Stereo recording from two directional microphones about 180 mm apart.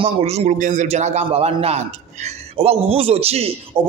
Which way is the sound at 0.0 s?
35° right (ahead or behind).